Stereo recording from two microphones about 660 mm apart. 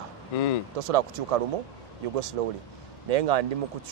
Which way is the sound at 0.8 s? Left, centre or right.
Right.